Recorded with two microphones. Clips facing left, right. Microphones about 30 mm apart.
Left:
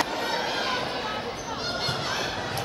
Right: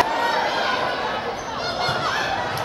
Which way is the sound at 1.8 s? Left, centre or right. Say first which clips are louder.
Right 7 dB; centre.